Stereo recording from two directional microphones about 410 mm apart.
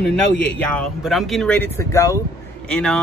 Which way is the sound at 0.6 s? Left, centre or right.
Centre.